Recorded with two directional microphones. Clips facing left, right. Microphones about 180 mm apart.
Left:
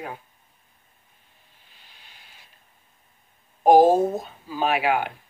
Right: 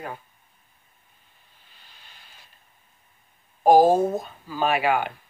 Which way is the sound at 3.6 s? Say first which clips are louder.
Left 1 dB; 20° left (ahead or behind).